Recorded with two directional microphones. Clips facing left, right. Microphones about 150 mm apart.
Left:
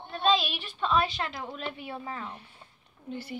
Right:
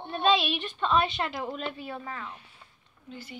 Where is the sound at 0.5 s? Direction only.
10° left (ahead or behind).